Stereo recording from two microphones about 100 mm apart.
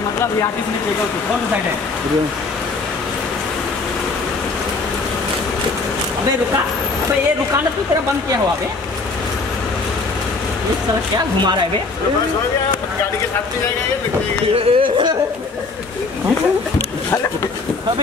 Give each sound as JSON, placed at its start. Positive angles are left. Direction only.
{"t": 11.1, "sound": "speech", "side_deg": -50}
{"t": 14.5, "sound": "speech", "side_deg": -60}